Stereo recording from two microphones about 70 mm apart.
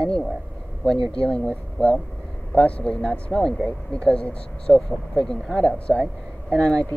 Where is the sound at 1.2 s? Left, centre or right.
Centre.